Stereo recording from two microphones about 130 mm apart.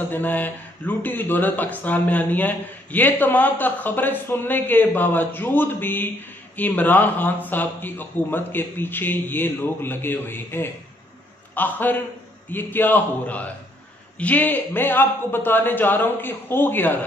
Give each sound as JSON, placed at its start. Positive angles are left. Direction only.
{"t": 0.1, "sound": "speech", "side_deg": 15}